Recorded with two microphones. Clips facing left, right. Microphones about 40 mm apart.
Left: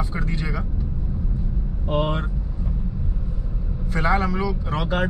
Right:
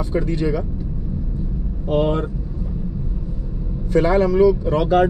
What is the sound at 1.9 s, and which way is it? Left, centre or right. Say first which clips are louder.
Speech: right 5 dB; left.